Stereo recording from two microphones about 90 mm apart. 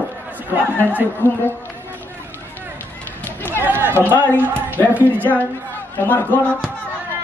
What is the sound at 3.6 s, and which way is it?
Chatter, 25° right (ahead or behind).